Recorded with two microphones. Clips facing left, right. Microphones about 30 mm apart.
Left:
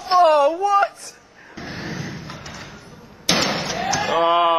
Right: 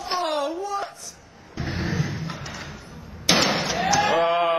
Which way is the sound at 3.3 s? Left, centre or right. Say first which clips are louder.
Even; centre.